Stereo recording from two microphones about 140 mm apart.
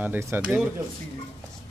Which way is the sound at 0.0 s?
15° right (ahead or behind).